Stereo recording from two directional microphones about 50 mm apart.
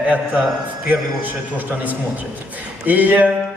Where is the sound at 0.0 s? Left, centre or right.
Right.